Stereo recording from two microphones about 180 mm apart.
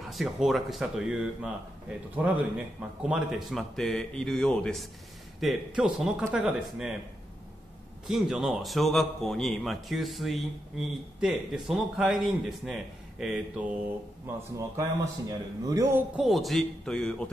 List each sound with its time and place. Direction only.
0.0 s a man's voice: centre (ahead or behind)
8.1 s a man's voice: centre (ahead or behind)
14.8 s a man's voice: 20° right (ahead or behind)
16.2 s a man's voice: centre (ahead or behind)